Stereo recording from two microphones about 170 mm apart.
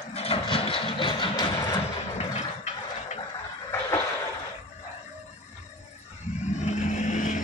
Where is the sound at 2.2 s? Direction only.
40° left (ahead or behind).